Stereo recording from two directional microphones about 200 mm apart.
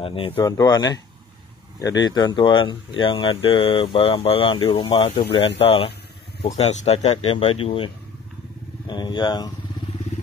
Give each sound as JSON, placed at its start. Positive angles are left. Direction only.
{"t": 0.0, "sound": "speech", "side_deg": 25}
{"t": 8.8, "sound": "vehicle", "side_deg": 20}